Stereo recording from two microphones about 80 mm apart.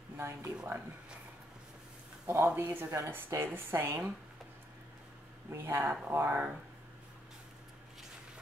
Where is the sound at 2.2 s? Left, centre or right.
Right.